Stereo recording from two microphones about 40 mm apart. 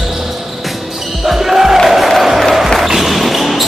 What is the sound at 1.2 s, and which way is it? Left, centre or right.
Basketball bounce, centre.